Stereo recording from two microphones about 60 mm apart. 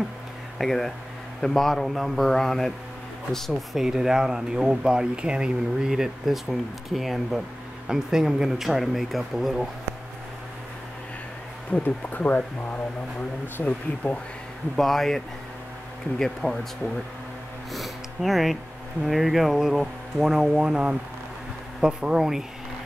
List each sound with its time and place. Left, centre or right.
0.6 s speech: centre
3.7 s speech: centre
11.7 s speech: left
14.8 s speech: centre
17.7 s speech: centre